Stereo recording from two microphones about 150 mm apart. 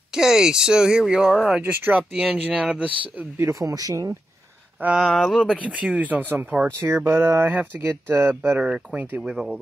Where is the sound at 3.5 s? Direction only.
20° right (ahead or behind).